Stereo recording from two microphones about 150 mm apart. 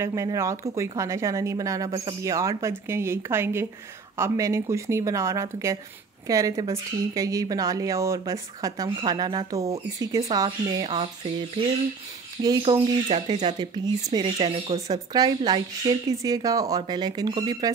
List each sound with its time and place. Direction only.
0.0 s a woman's voice: 20° right (ahead or behind)
10.9 s speech: 35° right (ahead or behind)
14.1 s speech: 35° right (ahead or behind)
14.9 s a woman's voice: 25° right (ahead or behind)